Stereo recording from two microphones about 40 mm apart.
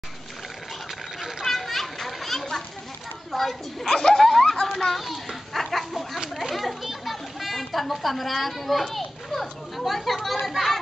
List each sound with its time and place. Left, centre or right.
1.4 s children playing: centre
3.3 s speech: centre
3.9 s speech: centre
4.2 s a sound: centre
6.3 s children playing: centre
10.4 s speech: centre